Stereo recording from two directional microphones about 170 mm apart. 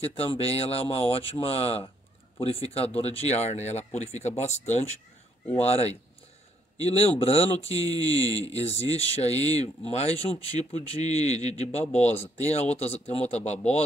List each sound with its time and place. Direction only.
0.0 s speech: 35° left (ahead or behind)